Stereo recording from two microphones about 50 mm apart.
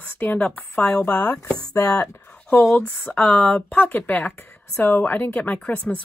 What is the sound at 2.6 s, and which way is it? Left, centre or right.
Speech, left.